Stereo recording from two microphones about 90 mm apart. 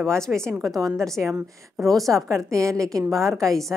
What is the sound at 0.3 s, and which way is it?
Speech, 15° right (ahead or behind).